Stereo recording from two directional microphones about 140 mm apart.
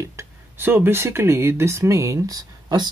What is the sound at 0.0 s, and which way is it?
Speech, 20° right (ahead or behind).